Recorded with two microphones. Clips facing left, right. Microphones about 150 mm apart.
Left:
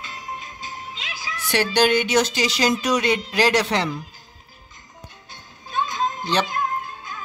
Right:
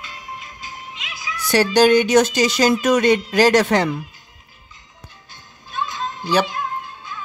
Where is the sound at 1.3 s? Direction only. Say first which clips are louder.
Right 5 dB; 40° right (ahead or behind).